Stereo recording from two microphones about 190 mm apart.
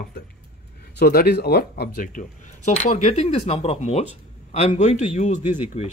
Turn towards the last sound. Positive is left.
turn(degrees=35)  # may be behind; listen again after turning